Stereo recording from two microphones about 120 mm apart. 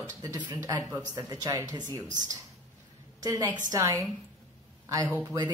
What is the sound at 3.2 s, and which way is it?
Speech, 35° right (ahead or behind).